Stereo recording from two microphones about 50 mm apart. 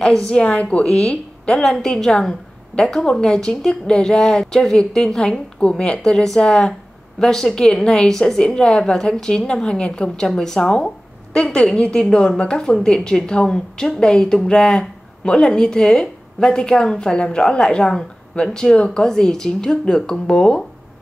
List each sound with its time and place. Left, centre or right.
0.3 s a woman's voice: left
1.6 s a woman's voice: centre